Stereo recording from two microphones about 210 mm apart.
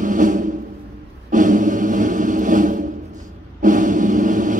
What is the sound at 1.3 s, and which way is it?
Music, 35° right (ahead or behind).